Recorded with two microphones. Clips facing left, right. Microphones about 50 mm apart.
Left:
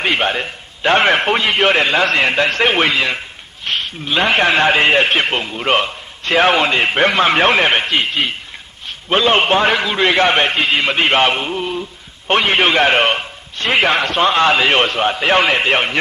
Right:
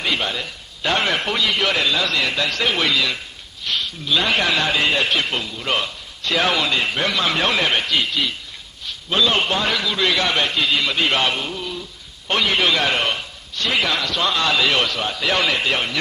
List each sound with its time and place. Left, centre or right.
0.0 s a man's voice: left